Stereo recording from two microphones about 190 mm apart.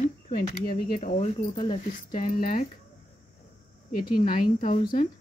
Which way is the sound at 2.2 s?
45° left (ahead or behind).